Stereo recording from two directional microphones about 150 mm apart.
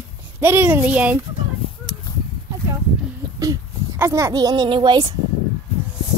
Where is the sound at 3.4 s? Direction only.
20° right (ahead or behind).